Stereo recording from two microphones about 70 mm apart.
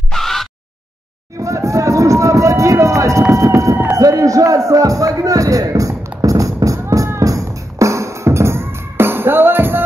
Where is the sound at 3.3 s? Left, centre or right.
Right.